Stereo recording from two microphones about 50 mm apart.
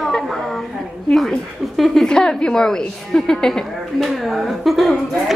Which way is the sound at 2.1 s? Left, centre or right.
Centre.